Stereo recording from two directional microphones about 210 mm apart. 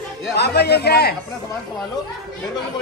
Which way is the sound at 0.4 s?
50° left (ahead or behind).